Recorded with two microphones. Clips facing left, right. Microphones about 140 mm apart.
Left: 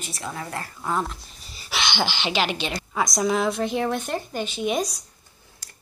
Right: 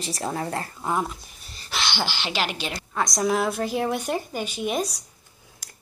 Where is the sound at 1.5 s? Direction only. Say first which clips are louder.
Left 2 dB; 5° left (ahead or behind).